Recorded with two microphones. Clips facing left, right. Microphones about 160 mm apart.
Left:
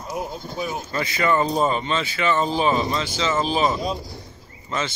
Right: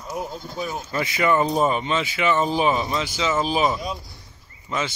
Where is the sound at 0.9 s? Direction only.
15° right (ahead or behind).